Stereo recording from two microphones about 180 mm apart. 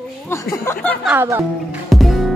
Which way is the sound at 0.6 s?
10° left (ahead or behind).